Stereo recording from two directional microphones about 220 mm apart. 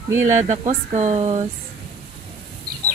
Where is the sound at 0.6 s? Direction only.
30° right (ahead or behind).